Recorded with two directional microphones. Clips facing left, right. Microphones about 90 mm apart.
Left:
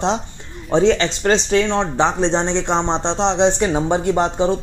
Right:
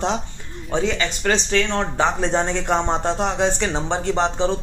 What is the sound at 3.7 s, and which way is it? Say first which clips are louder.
Speech: left 4 dB; 15° left (ahead or behind).